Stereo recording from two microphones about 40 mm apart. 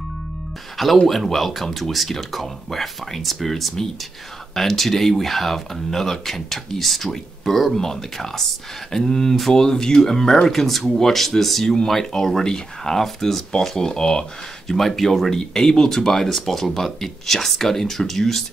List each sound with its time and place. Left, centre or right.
1.0 s speech: centre